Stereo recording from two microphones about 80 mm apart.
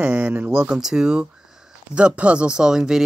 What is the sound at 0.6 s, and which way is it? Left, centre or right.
Speech, centre.